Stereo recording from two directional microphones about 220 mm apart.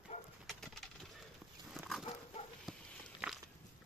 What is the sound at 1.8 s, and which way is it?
Chicken, centre (ahead or behind).